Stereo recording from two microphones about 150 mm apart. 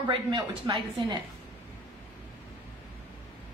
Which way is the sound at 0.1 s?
35° right (ahead or behind).